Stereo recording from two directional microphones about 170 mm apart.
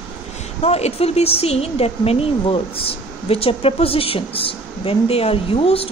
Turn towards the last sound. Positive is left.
turn(degrees=35)  # may be behind; listen again after turning